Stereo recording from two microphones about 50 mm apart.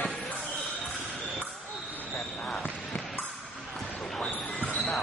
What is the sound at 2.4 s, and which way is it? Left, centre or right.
Basketball bounce, centre.